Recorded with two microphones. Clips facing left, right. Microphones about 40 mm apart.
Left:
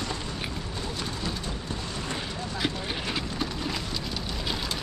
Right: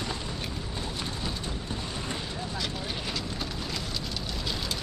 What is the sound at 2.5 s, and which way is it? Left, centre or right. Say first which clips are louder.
Vehicle: left 6 dB; left.